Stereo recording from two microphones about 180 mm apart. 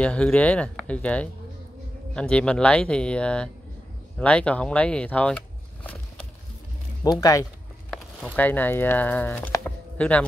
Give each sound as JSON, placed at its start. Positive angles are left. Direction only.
{"t": 0.0, "sound": "speech", "side_deg": 5}
{"t": 7.1, "sound": "speech", "side_deg": 20}
{"t": 7.9, "sound": "speech", "side_deg": 5}